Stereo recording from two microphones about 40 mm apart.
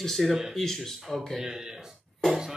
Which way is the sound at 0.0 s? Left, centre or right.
Centre.